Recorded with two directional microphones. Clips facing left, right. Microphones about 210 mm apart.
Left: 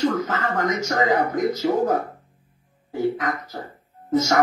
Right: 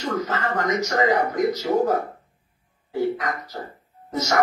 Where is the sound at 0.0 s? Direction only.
50° left (ahead or behind).